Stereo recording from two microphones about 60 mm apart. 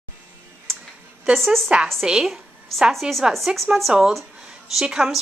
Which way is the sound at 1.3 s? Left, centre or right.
Centre.